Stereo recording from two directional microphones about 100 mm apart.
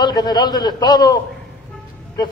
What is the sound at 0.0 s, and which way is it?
A man's voice, 45° left (ahead or behind).